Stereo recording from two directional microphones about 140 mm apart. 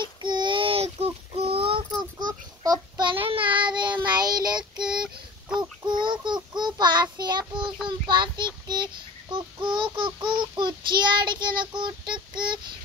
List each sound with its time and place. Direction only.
0.0 s child singing: 35° right (ahead or behind)
1.9 s child singing: 30° right (ahead or behind)